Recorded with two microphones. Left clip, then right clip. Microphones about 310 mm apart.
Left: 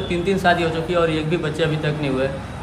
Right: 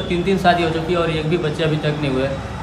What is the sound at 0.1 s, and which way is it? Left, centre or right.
A man's voice, centre.